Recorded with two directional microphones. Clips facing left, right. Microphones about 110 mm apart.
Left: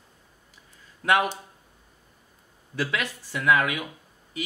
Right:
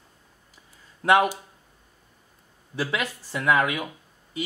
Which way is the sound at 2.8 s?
30° right (ahead or behind).